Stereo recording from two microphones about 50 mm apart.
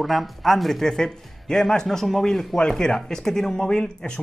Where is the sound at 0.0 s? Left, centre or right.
Centre.